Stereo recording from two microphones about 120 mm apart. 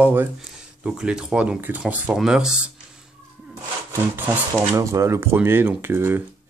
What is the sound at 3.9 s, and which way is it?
Speech, 25° right (ahead or behind).